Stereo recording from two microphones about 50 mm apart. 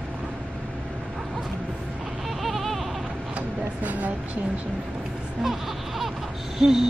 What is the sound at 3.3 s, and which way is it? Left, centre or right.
Train, right.